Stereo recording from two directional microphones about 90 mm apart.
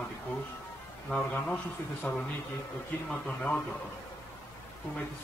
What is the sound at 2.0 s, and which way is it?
Speech, 30° left (ahead or behind).